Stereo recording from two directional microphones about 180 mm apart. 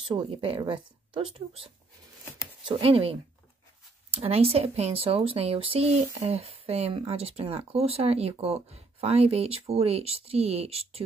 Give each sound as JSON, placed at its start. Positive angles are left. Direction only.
{"t": 0.1, "sound": "speech", "side_deg": -30}